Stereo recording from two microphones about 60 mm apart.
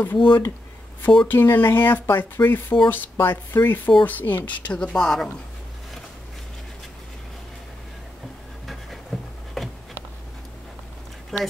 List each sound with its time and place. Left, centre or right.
0.0 s speech: left
4.7 s speech: centre
8.6 s a sound: centre
11.3 s a woman's voice: centre